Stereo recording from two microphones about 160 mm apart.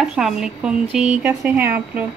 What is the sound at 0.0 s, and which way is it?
A woman's voice, 5° right (ahead or behind).